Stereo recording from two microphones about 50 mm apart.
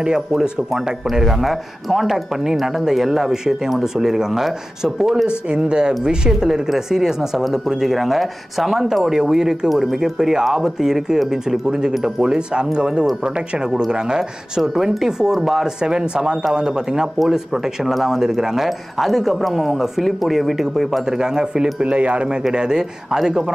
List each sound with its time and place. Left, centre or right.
0.3 s speech: centre
14.6 s speech: centre
21.0 s speech: centre
21.7 s speech: right